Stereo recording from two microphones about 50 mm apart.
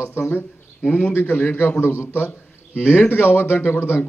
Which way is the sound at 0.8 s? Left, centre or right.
Left.